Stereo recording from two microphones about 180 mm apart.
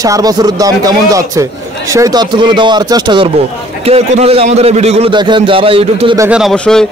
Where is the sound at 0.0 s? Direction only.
20° right (ahead or behind).